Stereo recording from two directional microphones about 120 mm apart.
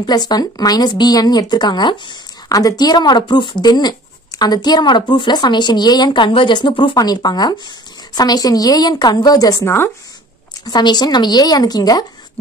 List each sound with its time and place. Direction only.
0.0 s speech: 35° left (ahead or behind)
10.6 s speech: 35° left (ahead or behind)